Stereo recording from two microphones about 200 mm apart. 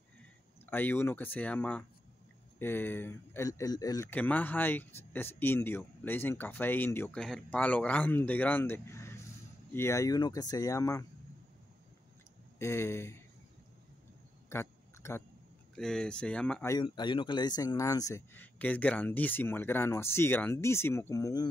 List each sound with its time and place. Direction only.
0.7 s speech: 10° left (ahead or behind)
12.5 s speech: 15° left (ahead or behind)
14.5 s a sound: 15° left (ahead or behind)
15.7 s speech: 5° left (ahead or behind)
16.7 s speech: 20° left (ahead or behind)